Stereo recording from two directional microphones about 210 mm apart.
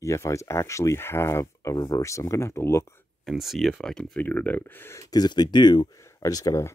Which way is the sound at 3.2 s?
Centre (ahead or behind).